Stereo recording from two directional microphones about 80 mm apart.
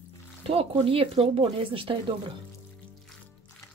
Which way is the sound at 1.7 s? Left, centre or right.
Right.